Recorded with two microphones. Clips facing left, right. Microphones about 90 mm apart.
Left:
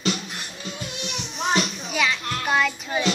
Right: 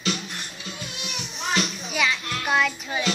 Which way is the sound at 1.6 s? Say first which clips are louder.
Left 1 dB; centre (ahead or behind).